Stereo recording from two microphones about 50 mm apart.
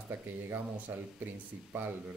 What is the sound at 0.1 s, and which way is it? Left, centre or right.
Speech, right.